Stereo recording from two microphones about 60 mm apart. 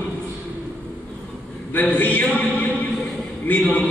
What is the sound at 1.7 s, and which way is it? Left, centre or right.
Speech, left.